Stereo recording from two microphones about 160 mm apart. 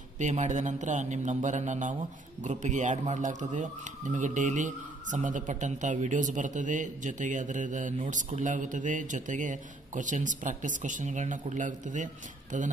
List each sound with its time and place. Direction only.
0.2 s speech: 50° right (ahead or behind)